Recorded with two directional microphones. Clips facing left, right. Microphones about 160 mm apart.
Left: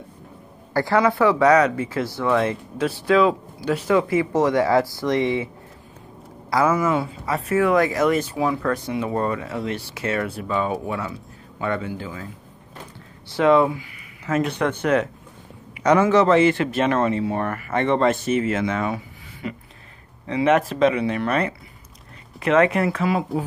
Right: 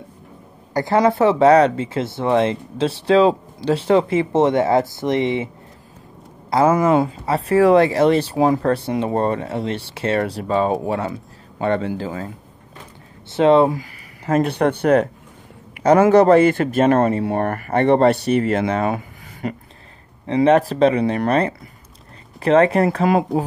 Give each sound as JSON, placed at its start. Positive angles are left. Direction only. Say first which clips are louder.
{"t": 0.7, "sound": "speech", "louder": "right 3 dB", "side_deg": -20}
{"t": 6.7, "sound": "speech", "louder": "right 5 dB", "side_deg": -50}
{"t": 7.2, "sound": "speech", "louder": "right 5 dB", "side_deg": -30}
{"t": 13.3, "sound": "speech", "louder": "right 3 dB", "side_deg": -30}
{"t": 13.7, "sound": "speech", "louder": "right 4 dB", "side_deg": -40}
{"t": 16.0, "sound": "speech", "louder": "right 5 dB", "side_deg": -50}
{"t": 20.2, "sound": "speech", "louder": "right 4 dB", "side_deg": -35}
{"t": 23.0, "sound": "speech", "louder": "right 5 dB", "side_deg": -50}